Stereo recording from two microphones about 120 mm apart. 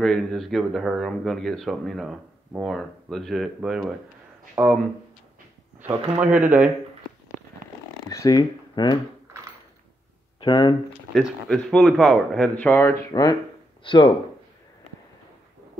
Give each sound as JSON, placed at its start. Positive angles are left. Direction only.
{"t": 0.0, "sound": "a man's voice", "side_deg": 5}
{"t": 4.6, "sound": "speech", "side_deg": -15}
{"t": 6.1, "sound": "speech", "side_deg": -10}
{"t": 8.1, "sound": "speech", "side_deg": 30}
{"t": 10.4, "sound": "speech", "side_deg": 40}
{"t": 11.1, "sound": "a man's voice", "side_deg": 5}
{"t": 12.5, "sound": "speech", "side_deg": 20}
{"t": 13.8, "sound": "speech", "side_deg": 45}